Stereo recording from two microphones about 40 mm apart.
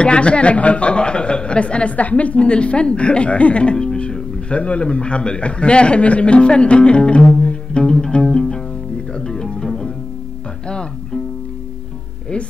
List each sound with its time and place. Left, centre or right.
0.0 s speech: left
9.1 s music: centre